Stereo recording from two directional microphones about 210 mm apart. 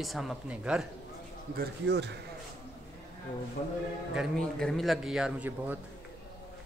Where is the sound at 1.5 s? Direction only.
55° right (ahead or behind).